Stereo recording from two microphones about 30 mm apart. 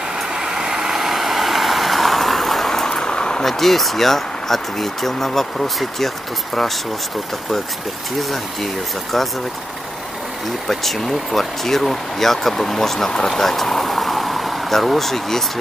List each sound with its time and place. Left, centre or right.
0.3 s vehicle: centre
2.7 s vehicle: centre
3.0 s a sound: left
3.4 s speech: centre
10.7 s speech: centre
13.4 s vehicle: centre
14.7 s speech: centre